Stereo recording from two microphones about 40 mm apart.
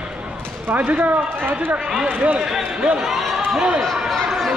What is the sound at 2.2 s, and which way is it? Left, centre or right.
Speech, right.